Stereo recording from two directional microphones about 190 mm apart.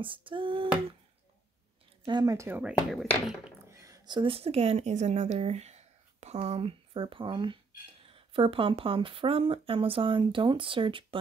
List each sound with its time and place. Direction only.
0.0 s a woman's voice: 25° right (ahead or behind)
2.0 s speech: 20° right (ahead or behind); by 3.1 s 5° right (ahead or behind)
3.7 s a woman's voice: 15° right (ahead or behind)